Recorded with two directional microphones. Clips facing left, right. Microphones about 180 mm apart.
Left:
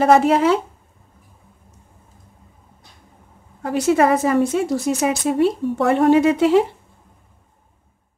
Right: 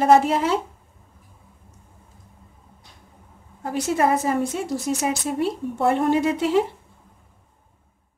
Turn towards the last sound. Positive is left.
turn(degrees=80)